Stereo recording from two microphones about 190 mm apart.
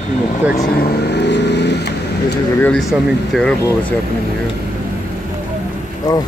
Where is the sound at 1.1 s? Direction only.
65° left (ahead or behind).